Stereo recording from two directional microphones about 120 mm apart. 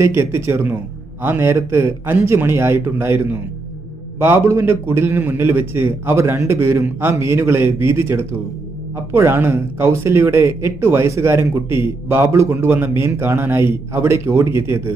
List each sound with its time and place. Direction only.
0.0 s a man's voice: 20° right (ahead or behind)